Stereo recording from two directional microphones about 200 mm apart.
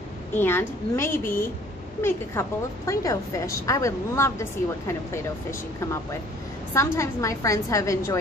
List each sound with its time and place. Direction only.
0.3 s a woman's voice: 10° left (ahead or behind)